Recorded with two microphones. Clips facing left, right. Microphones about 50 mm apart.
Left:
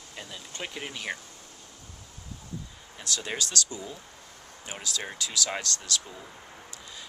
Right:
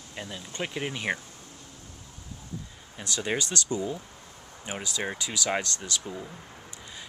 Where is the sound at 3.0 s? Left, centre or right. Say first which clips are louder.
Right 3 dB; centre.